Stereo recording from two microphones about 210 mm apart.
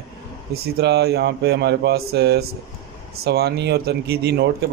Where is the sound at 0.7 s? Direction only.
50° right (ahead or behind).